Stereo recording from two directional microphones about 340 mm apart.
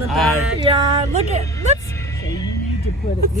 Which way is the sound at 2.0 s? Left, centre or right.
Centre.